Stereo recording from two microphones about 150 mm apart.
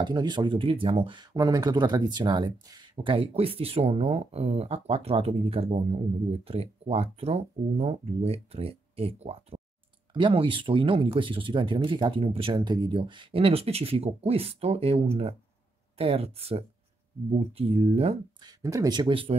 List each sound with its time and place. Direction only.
0.0 s speech: 30° right (ahead or behind)
16.0 s speech: 40° right (ahead or behind)
18.4 s speech: 25° right (ahead or behind)